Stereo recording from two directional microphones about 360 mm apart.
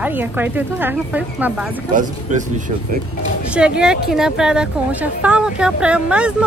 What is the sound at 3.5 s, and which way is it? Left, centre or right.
Speech, centre.